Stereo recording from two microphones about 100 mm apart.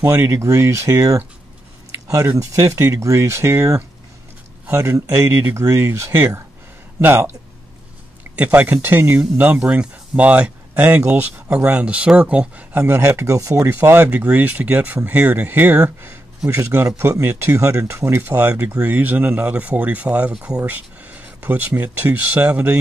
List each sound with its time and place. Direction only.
0.3 s speech: 30° right (ahead or behind)
8.4 s speech: 15° right (ahead or behind)